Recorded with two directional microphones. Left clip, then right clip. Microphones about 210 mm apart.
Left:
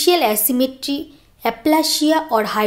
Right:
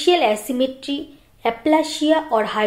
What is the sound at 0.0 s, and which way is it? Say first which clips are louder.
A woman's voice: left 1 dB; 40° left (ahead or behind).